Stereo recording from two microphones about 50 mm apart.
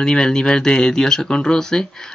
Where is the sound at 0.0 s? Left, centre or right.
Centre.